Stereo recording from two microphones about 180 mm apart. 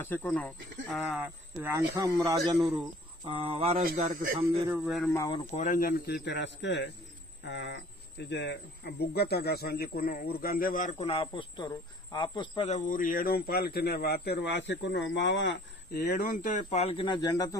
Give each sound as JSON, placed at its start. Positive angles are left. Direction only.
{"t": 0.0, "sound": "speech", "side_deg": 10}
{"t": 1.1, "sound": "speech", "side_deg": -10}
{"t": 3.3, "sound": "speech", "side_deg": -30}
{"t": 3.8, "sound": "a man's voice", "side_deg": -45}
{"t": 4.4, "sound": "speech", "side_deg": -15}
{"t": 4.8, "sound": "speech", "side_deg": 0}
{"t": 5.1, "sound": "speech", "side_deg": 20}
{"t": 5.5, "sound": "a man's voice", "side_deg": 45}
{"t": 11.0, "sound": "speech", "side_deg": 30}